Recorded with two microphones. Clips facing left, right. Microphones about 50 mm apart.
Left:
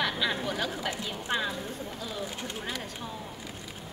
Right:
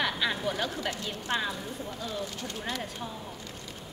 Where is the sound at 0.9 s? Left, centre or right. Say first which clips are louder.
Even; centre.